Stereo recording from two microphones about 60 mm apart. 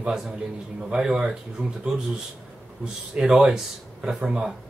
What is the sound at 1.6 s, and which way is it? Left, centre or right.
Speech, right.